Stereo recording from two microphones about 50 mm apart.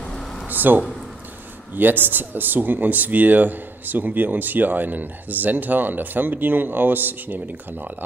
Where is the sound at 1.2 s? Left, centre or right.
Right.